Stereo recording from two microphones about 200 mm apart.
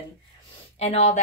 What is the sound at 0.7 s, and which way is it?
Speech, 30° left (ahead or behind).